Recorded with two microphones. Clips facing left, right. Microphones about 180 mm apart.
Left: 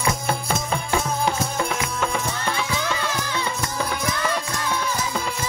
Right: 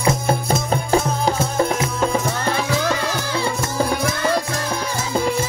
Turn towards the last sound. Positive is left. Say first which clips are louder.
# right 5 dB
turn(degrees=-35)  # may be behind; listen again after turning